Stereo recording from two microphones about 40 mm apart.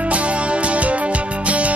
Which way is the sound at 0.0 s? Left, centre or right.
Right.